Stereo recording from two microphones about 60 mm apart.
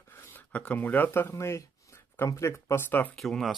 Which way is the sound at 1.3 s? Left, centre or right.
Left.